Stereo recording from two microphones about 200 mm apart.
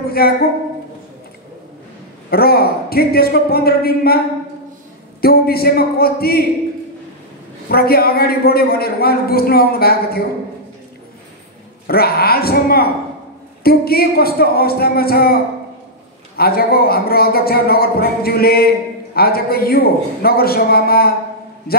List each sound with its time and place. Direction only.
0.2 s speech: 50° left (ahead or behind)
2.3 s speech: 50° left (ahead or behind)
5.2 s speech: 50° left (ahead or behind)
7.7 s speech: 50° left (ahead or behind)
11.9 s speech: 50° left (ahead or behind)